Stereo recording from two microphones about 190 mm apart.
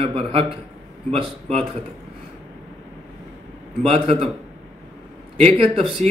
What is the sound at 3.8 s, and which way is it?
Speech, 30° right (ahead or behind).